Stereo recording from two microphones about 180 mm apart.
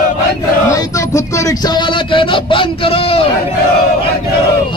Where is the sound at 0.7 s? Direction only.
15° left (ahead or behind).